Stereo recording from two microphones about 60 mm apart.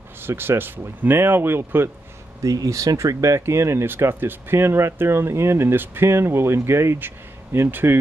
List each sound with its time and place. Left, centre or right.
0.2 s speech: right
2.4 s speech: right